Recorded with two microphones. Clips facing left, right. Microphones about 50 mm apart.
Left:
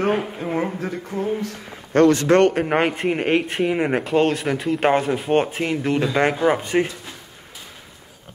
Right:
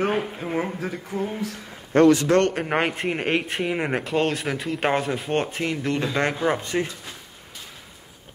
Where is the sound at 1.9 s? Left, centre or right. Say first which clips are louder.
Left 1 dB; left.